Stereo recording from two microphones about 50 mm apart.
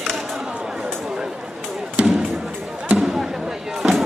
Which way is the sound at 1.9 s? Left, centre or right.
Right.